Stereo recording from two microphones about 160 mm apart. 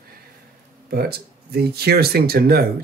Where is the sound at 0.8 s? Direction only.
80° right.